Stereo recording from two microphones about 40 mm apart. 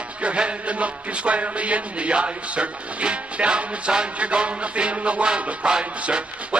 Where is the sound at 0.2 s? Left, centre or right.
Right.